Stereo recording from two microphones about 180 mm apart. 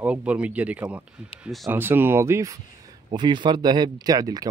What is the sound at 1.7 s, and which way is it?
Speech, 10° right (ahead or behind).